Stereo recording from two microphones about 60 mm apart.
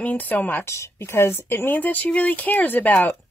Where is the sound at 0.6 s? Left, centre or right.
Left.